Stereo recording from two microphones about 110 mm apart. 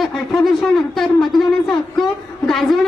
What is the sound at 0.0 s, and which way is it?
Speech, centre (ahead or behind).